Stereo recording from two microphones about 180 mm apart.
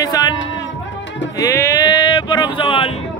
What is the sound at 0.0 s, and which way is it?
Music, 20° left (ahead or behind).